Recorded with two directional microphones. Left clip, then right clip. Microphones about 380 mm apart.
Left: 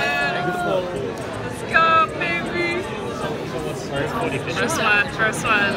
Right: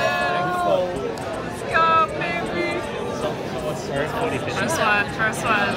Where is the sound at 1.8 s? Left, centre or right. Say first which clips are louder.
Even; centre.